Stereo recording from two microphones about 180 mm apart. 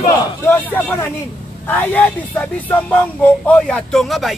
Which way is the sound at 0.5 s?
10° left (ahead or behind).